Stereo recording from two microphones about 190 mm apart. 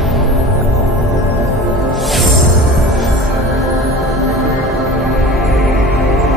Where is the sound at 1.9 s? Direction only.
Centre (ahead or behind).